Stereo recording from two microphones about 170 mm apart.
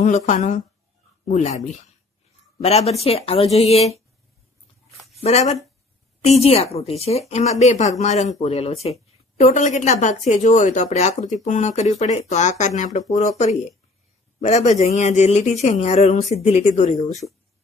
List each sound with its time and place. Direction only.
0.0 s speech: 45° left (ahead or behind)
5.2 s speech: 40° left (ahead or behind)